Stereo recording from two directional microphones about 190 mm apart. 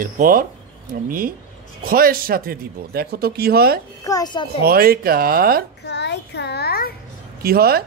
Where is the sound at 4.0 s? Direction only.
20° left (ahead or behind).